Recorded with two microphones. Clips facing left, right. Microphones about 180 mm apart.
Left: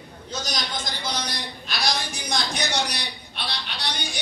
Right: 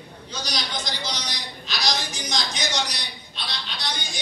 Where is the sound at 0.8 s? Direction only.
50° left (ahead or behind).